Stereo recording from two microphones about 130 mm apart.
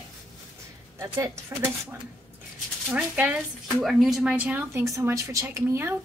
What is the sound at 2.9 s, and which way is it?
A woman's voice, 10° right (ahead or behind).